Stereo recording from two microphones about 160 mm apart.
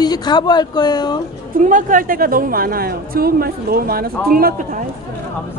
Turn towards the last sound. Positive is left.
turn(degrees=-65)  # may be behind; listen again after turning